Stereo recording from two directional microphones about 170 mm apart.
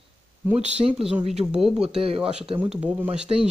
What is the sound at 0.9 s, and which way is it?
Speech, 5° right (ahead or behind).